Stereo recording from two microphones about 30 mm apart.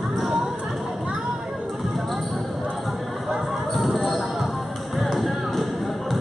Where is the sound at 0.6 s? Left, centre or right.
Centre.